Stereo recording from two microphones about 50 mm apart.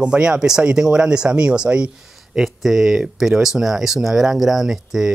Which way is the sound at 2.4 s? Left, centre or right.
Centre.